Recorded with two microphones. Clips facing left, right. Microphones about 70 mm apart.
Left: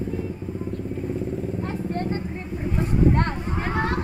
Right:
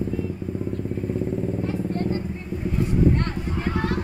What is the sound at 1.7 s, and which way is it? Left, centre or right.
Vehicle, left.